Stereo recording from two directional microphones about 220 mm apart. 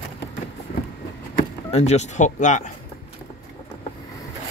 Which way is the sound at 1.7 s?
30° left (ahead or behind).